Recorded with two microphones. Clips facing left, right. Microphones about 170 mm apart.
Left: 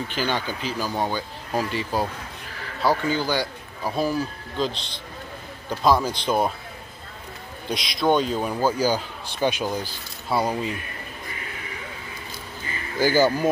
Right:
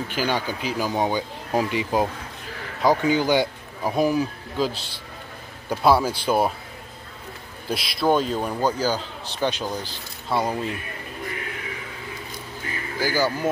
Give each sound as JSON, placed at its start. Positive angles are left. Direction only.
{"t": 0.1, "sound": "speech", "side_deg": -10}
{"t": 7.7, "sound": "a man's voice", "side_deg": -5}
{"t": 13.0, "sound": "speech", "side_deg": 20}